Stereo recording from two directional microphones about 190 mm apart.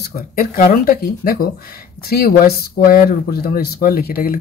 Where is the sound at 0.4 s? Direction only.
50° left (ahead or behind).